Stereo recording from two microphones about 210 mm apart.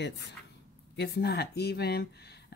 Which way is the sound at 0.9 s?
50° left (ahead or behind).